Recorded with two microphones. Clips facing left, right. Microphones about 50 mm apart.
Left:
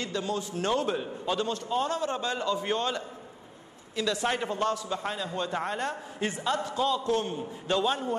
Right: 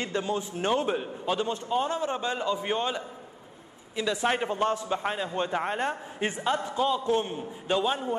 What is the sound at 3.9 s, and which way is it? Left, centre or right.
A man's voice, right.